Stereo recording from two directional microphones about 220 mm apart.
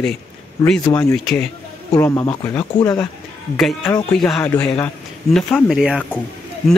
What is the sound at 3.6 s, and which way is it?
Speech, centre (ahead or behind).